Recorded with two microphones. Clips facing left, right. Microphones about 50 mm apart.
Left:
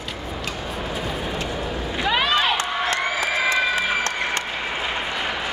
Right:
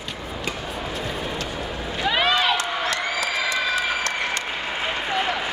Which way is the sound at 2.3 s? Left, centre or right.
Left.